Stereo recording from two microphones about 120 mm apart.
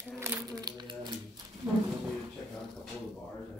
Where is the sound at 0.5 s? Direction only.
35° right (ahead or behind).